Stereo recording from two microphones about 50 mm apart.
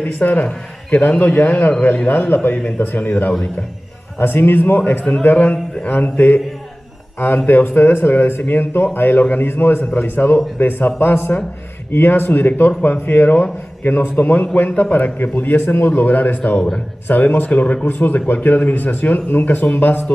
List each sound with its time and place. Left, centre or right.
0.0 s speech: left